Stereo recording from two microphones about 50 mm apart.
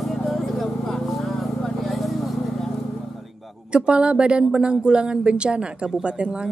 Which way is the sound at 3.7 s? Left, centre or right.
Right.